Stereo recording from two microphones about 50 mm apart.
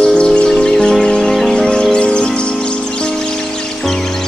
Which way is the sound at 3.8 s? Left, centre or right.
Centre.